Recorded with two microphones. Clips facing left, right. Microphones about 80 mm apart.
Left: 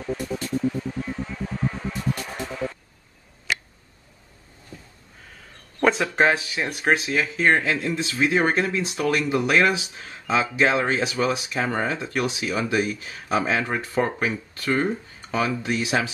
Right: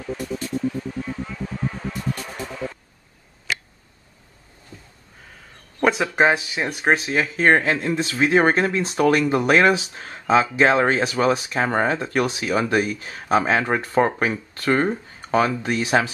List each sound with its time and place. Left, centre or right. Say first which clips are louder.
5.8 s a sound: right 1 dB; centre
6.2 s speech: right 2 dB; centre
6.9 s speech: right 2 dB; right